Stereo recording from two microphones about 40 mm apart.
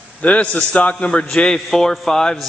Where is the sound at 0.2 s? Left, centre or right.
Left.